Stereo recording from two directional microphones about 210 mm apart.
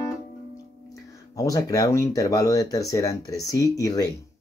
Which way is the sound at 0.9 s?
15° left (ahead or behind).